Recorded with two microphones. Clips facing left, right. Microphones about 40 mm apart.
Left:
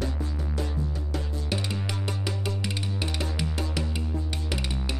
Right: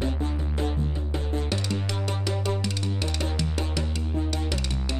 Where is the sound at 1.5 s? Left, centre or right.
Centre.